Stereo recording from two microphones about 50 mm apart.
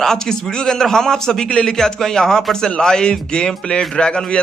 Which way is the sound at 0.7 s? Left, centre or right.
Centre.